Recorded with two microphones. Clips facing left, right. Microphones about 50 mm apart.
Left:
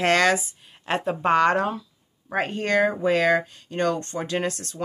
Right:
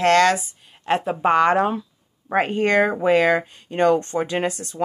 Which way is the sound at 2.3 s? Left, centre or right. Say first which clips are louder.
Right 5 dB; right.